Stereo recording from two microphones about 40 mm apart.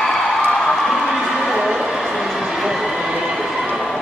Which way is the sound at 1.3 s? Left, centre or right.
Centre.